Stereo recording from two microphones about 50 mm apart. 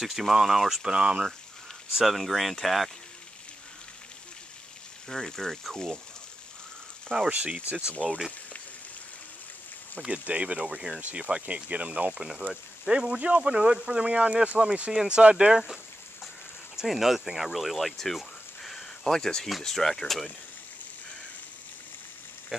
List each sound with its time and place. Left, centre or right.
0.0 s speech: centre
0.8 s speech: centre
2.0 s speech: centre
5.0 s speech: centre
7.2 s speech: right
10.0 s speech: right
14.9 s speech: centre
16.7 s speech: centre
22.5 s speech: centre